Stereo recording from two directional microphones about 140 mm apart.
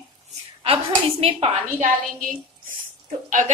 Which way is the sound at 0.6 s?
45° right (ahead or behind).